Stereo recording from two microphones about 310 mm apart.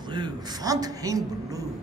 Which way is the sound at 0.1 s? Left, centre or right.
Centre.